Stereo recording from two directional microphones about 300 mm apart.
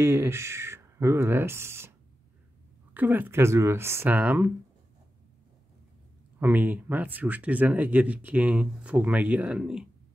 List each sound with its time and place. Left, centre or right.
0.0 s speech: centre
6.4 s speech: centre